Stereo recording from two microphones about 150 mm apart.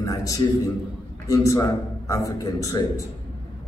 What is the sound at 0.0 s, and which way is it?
A man's voice, 25° left (ahead or behind).